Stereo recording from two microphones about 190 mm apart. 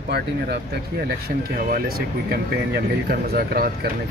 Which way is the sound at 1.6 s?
50° right (ahead or behind).